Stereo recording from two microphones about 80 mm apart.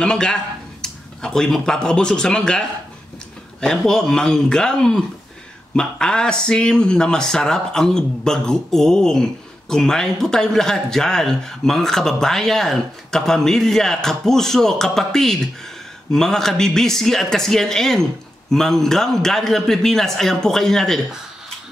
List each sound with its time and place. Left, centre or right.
0.0 s speech: centre
3.6 s a man's voice: centre